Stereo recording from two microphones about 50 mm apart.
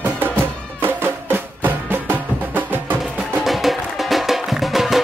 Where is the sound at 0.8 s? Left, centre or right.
Right.